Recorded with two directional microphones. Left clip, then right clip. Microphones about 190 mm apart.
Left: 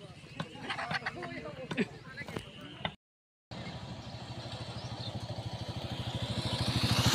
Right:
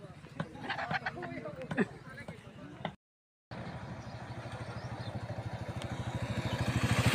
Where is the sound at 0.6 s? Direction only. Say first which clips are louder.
Even; 25° right (ahead or behind).